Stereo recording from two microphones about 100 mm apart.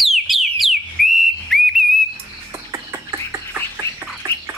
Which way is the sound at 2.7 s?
30° right (ahead or behind).